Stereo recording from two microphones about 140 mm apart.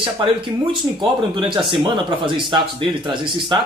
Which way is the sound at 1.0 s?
35° right (ahead or behind).